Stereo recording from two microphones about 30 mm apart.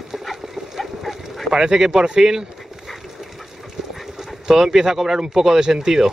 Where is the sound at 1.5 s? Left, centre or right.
Right.